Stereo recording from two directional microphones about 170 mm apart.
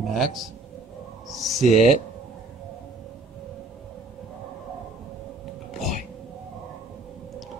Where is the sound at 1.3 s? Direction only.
Centre (ahead or behind).